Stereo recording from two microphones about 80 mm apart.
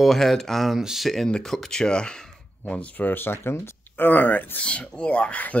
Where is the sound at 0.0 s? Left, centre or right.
Centre; by 4.6 s left.